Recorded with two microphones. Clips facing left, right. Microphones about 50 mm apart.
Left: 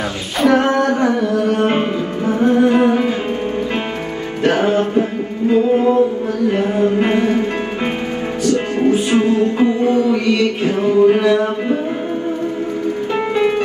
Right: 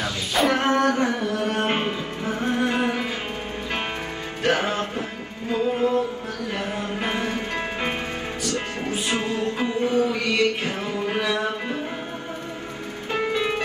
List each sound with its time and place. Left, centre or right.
0.5 s music: left
4.4 s music: left
6.5 s music: left
10.4 s a sound: left
13.1 s music: left